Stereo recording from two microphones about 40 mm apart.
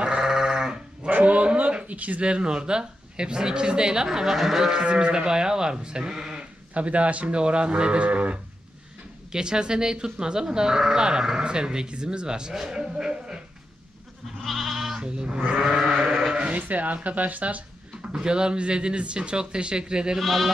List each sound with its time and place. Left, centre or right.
0.0 s sheep: centre
1.0 s dog: right
2.0 s speech: right
2.2 s speech: right
6.7 s speech: right
9.3 s speech: centre
12.7 s a sound: centre
14.4 s goat: centre
15.0 s goat: right
16.0 s sheep: centre
16.5 s speech: right
18.0 s speech: right
20.2 s speech: centre